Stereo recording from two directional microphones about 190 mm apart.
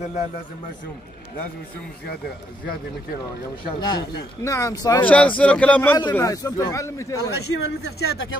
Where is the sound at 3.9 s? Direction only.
20° left (ahead or behind).